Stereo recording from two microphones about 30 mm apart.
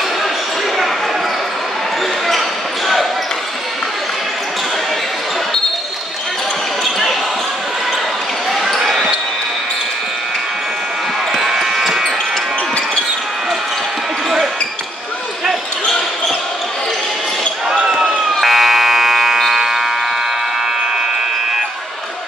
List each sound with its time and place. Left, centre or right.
6.8 s basketball bounce: centre
8.7 s basketball bounce: centre
11.4 s basketball bounce: centre
17.8 s basketball bounce: right
18.4 s a sound: centre